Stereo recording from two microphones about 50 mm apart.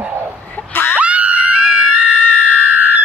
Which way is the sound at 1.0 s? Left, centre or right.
Right.